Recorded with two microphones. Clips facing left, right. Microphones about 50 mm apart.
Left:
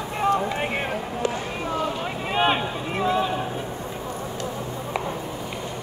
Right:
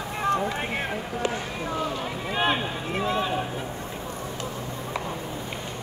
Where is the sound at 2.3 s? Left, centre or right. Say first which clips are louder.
Left 3 dB; left.